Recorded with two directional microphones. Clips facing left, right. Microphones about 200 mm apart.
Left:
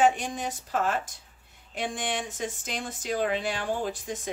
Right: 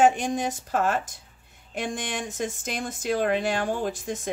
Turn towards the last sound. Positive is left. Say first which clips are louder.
# right 3 dB
turn(degrees=-45)  # may be behind; listen again after turning